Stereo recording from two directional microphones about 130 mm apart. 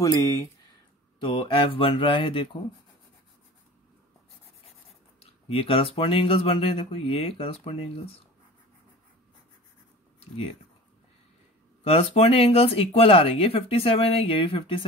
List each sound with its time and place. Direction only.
0.0 s speech: 25° left (ahead or behind)
1.2 s speech: 40° left (ahead or behind)
5.5 s speech: 45° left (ahead or behind)
11.8 s speech: 50° left (ahead or behind)